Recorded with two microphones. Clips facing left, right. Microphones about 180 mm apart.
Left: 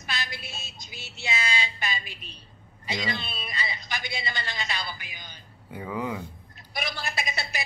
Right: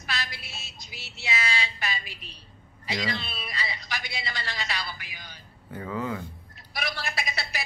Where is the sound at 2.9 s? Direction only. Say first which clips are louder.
Even; centre (ahead or behind).